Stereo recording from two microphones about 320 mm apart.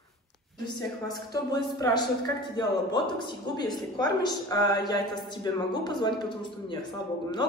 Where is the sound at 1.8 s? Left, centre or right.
Centre.